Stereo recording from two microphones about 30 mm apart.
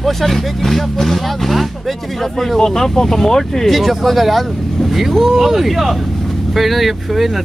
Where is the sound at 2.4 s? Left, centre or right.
Centre.